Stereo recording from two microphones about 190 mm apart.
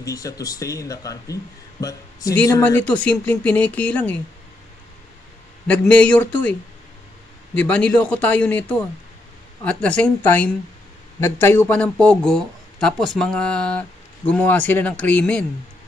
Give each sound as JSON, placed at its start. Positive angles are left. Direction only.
{"t": 0.0, "sound": "speech", "side_deg": 20}
{"t": 5.7, "sound": "speech", "side_deg": 5}
{"t": 7.5, "sound": "a woman's voice", "side_deg": 5}